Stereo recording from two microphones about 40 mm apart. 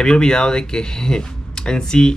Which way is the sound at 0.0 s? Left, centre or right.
Centre.